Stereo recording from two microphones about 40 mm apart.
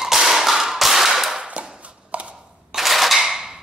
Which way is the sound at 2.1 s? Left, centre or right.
Right.